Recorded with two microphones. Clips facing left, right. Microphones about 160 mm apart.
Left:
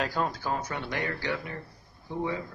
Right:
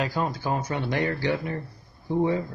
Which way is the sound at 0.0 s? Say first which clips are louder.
Right 3 dB; 10° right (ahead or behind).